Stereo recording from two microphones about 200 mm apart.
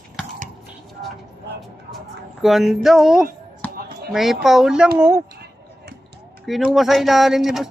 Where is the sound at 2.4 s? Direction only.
Centre (ahead or behind).